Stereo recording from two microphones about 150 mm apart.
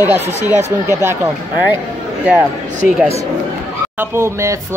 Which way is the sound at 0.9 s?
15° right (ahead or behind).